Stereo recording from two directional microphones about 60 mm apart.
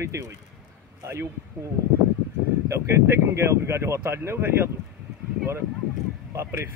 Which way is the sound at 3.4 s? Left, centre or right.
Right.